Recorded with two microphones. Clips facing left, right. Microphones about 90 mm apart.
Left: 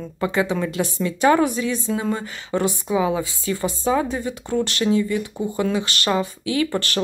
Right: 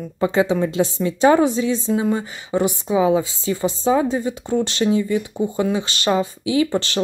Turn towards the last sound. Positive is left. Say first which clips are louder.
# right 3 dB
turn(degrees=-20)  # may be behind; listen again after turning